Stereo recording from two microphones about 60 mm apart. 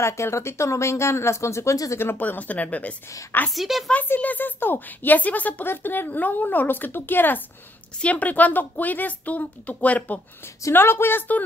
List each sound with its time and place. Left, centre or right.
0.0 s speech: left
2.0 s a woman's voice: left
3.5 s speech: centre
3.9 s a woman's voice: left
10.7 s a woman's voice: left